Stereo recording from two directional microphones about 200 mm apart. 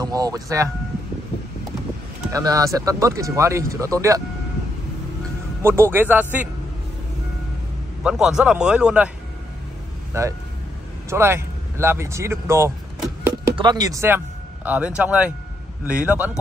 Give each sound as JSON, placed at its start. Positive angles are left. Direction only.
{"t": 0.0, "sound": "speech", "side_deg": -20}
{"t": 2.3, "sound": "speech", "side_deg": -15}
{"t": 5.6, "sound": "speech", "side_deg": -10}
{"t": 8.0, "sound": "a man's voice", "side_deg": -5}
{"t": 10.1, "sound": "speech", "side_deg": -15}